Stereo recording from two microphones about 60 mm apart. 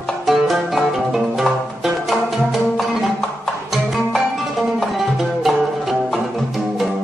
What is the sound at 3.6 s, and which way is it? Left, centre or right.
Music, centre.